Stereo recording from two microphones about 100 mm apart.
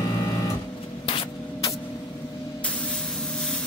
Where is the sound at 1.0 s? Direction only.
65° left (ahead or behind).